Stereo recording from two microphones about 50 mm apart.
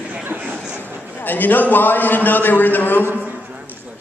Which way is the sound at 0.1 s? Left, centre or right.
Right.